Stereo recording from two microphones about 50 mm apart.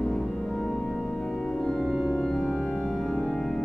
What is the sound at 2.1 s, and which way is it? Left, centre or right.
Organ, centre.